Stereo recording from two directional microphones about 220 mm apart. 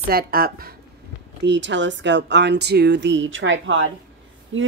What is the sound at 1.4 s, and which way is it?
Speech, 55° right (ahead or behind).